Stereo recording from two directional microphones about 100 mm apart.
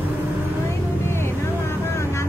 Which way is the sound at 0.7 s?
25° left (ahead or behind).